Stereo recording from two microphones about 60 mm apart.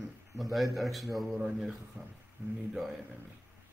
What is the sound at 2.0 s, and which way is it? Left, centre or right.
Speech, right.